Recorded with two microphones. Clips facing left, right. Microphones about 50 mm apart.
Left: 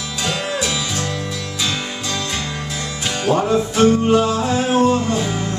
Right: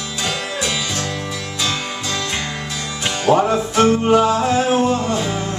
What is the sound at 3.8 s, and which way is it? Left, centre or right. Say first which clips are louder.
Music: right 1 dB; right.